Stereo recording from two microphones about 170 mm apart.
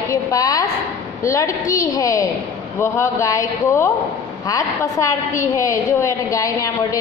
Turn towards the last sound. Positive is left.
turn(degrees=20)  # may be behind; listen again after turning